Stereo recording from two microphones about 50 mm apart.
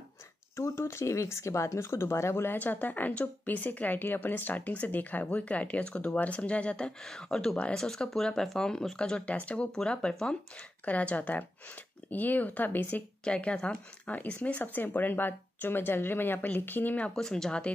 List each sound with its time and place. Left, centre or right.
0.6 s speech: left
7.0 s speech: centre; by 9.7 s left
9.8 s speech: centre
10.9 s speech: left
13.2 s speech: left
14.6 s speech: left
17.1 s speech: centre